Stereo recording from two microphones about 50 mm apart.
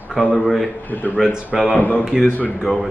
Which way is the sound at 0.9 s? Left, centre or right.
Left.